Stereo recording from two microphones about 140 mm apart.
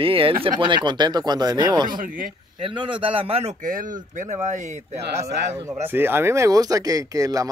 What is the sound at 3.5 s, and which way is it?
Speech, 70° right (ahead or behind).